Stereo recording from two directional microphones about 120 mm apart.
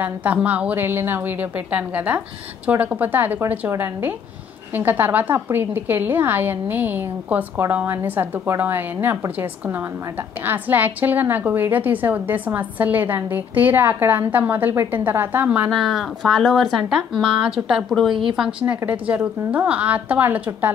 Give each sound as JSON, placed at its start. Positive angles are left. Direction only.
{"t": 0.0, "sound": "a woman's voice", "side_deg": -15}
{"t": 15.7, "sound": "a woman's voice", "side_deg": 0}